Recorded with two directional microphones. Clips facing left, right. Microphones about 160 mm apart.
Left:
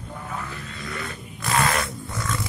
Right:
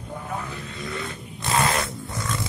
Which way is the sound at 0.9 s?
25° right (ahead or behind).